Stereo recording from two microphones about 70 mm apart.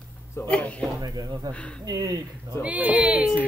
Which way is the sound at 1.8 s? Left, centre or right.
Right.